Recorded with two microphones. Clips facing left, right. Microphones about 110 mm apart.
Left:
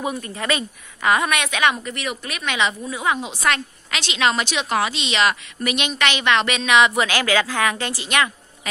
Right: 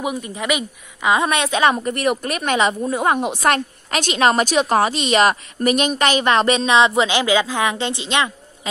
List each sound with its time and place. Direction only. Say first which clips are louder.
0.0 s a woman's voice: right 2 dB; 15° right (ahead or behind)
1.2 s a woman's voice: right 3 dB; 30° right (ahead or behind)